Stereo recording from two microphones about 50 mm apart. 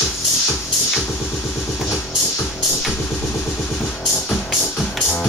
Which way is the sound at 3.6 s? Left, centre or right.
Centre.